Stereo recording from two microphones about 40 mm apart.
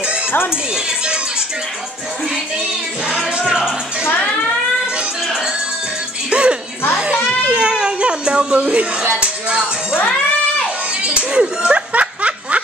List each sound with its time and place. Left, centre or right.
3.4 s music: centre
6.3 s music: right
7.4 s baby cry: right
8.5 s speech: right
9.2 s music: right
11.0 s speech: right
11.9 s snicker: right